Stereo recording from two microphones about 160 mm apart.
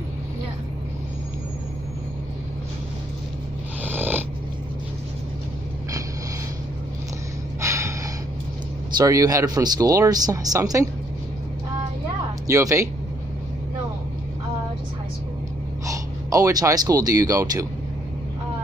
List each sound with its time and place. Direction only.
3.8 s snoring: 10° right (ahead or behind)
7.6 s gasp: 20° right (ahead or behind)
8.9 s speech: 20° right (ahead or behind)
12.4 s speech: 20° right (ahead or behind)
15.9 s speech: 20° right (ahead or behind)